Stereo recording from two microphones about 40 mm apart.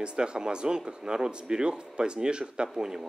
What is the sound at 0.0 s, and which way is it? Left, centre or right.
Speech, right.